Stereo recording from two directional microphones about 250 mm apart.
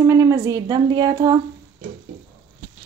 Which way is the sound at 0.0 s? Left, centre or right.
Centre.